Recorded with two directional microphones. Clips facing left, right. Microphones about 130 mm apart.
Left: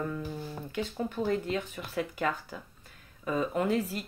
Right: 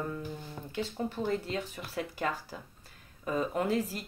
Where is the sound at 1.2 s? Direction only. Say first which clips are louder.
Left 4 dB; 30° right (ahead or behind).